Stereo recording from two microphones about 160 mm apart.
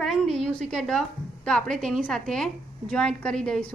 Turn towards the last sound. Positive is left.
turn(degrees=5)  # may be behind; listen again after turning